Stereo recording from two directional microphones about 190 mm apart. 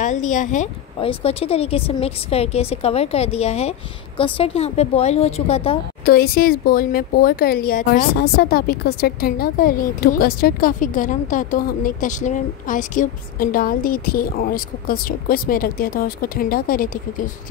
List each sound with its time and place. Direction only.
0.0 s a woman's voice: 40° left (ahead or behind)
0.9 s a woman's voice: 30° left (ahead or behind)
6.0 s speech: 50° left (ahead or behind)